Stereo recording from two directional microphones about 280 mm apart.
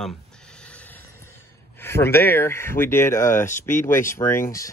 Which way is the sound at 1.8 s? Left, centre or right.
Centre.